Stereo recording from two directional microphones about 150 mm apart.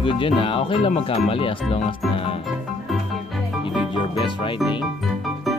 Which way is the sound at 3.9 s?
35° left (ahead or behind).